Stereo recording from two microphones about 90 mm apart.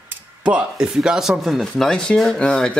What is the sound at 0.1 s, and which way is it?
Speech, 10° right (ahead or behind).